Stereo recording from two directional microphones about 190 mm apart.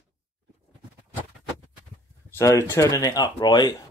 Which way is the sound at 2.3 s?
15° left (ahead or behind).